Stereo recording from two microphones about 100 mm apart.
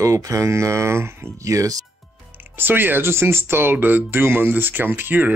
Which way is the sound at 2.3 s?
20° right (ahead or behind).